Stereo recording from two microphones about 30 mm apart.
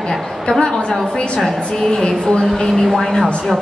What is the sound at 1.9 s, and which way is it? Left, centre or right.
Speech, left.